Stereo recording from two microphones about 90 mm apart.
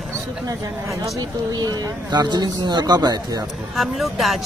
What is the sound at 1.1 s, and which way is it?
Speech, 45° right (ahead or behind).